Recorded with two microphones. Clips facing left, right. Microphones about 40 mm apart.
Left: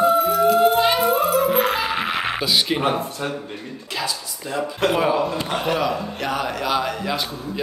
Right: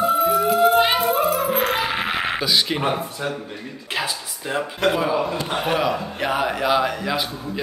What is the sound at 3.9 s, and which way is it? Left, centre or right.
Speech, right.